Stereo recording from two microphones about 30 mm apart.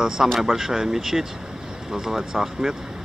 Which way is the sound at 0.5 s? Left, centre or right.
Centre.